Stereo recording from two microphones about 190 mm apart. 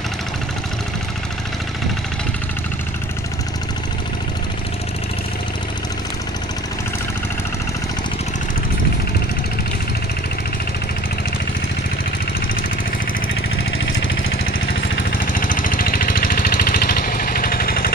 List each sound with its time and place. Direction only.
15.0 s vehicle: 45° left (ahead or behind)